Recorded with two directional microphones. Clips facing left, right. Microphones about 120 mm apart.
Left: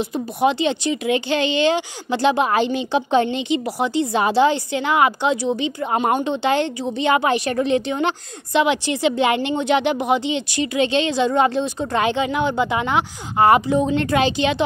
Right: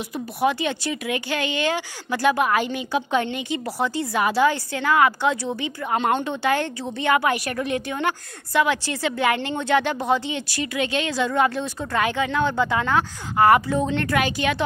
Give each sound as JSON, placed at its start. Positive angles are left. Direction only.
{"t": 0.1, "sound": "speech", "side_deg": 20}